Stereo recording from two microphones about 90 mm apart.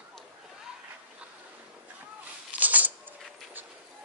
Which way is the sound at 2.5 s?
20° right (ahead or behind).